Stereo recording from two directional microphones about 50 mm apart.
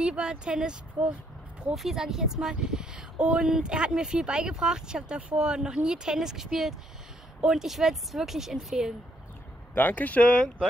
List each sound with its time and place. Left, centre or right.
0.0 s speech: centre
9.8 s speech: left